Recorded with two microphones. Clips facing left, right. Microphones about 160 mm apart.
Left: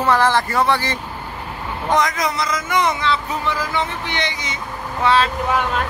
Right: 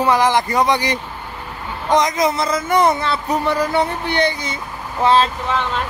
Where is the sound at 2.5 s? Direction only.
30° right (ahead or behind).